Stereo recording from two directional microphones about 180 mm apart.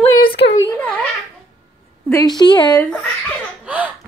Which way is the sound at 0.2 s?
55° left (ahead or behind).